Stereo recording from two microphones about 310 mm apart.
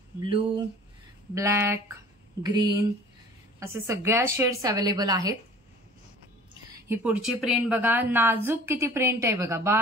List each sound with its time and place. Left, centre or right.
0.2 s a woman's voice: centre
6.9 s a woman's voice: centre